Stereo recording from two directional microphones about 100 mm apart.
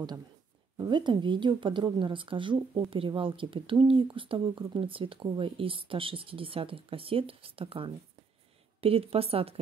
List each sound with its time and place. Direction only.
0.8 s a woman's voice: 50° right (ahead or behind); by 9.6 s 75° right (ahead or behind)